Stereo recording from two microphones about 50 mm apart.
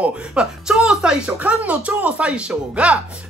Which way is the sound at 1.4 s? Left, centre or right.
Right.